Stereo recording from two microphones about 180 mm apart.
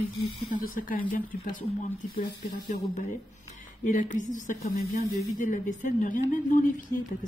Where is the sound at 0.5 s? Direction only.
50° left (ahead or behind).